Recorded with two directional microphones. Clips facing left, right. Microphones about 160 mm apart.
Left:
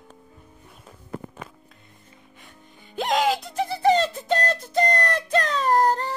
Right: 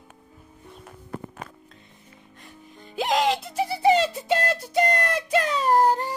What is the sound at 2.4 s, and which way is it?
Music, centre (ahead or behind).